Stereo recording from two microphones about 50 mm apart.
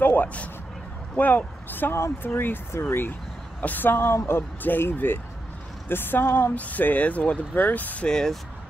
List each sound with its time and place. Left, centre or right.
0.0 s vehicle: left
1.1 s a woman's voice: left
3.6 s a woman's voice: left
4.6 s a woman's voice: left
6.5 s speech: left
8.1 s speech: centre